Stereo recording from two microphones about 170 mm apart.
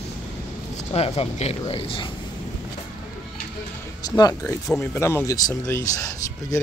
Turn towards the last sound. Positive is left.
turn(degrees=20)  # may be behind; listen again after turning